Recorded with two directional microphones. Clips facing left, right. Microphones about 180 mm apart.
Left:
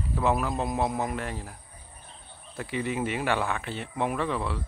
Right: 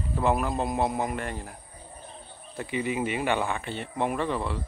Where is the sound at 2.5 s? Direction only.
5° right (ahead or behind).